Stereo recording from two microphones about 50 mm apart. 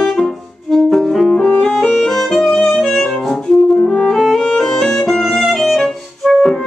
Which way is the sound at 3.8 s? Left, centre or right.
Centre.